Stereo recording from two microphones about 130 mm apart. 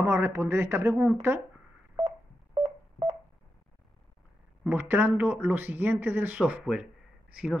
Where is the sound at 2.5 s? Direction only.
45° right (ahead or behind).